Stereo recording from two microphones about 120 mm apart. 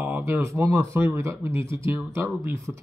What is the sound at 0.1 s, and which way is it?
Speech, 20° right (ahead or behind).